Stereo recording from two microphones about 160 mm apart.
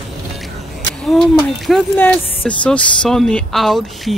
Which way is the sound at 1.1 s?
Centre (ahead or behind).